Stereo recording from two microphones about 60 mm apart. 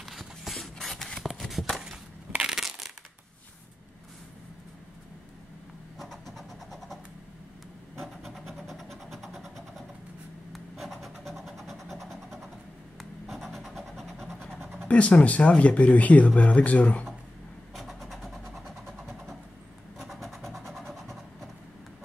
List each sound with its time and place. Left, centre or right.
0.0 s a sound: centre
2.5 s crushing: centre
5.9 s vehicle: centre
10.5 s vehicle: centre
14.9 s speech: left
17.7 s vehicle: centre